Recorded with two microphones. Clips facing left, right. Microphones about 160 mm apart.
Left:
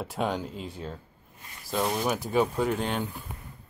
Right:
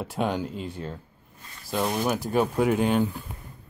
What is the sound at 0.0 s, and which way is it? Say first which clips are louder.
Speech: right 2 dB; centre (ahead or behind).